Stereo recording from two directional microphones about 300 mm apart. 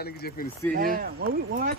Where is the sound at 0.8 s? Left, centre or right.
Right.